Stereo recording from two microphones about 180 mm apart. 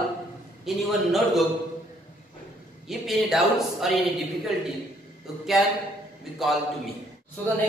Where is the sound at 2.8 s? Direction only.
Centre (ahead or behind).